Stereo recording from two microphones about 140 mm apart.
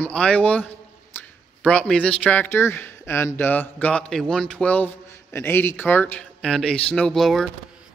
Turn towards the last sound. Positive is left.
turn(degrees=0)  # may be behind; listen again after turning